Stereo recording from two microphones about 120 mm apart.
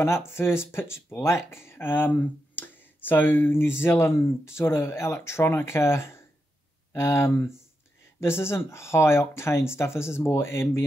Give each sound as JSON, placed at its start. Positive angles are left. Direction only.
{"t": 0.0, "sound": "speech", "side_deg": 20}